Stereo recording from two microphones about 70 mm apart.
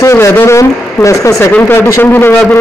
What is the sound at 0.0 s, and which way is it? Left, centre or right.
Speech, left.